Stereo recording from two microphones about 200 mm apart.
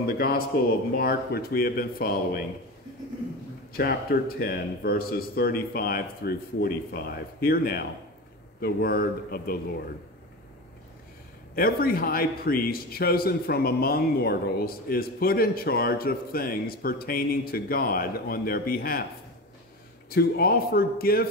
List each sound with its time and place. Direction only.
0.0 s a man's voice: 50° left (ahead or behind)
3.7 s a man's voice: 50° left (ahead or behind)
11.5 s a man's voice: 45° left (ahead or behind)
20.1 s a man's voice: 50° left (ahead or behind)